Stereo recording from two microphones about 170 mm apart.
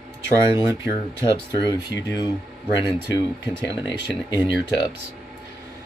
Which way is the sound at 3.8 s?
25° left (ahead or behind).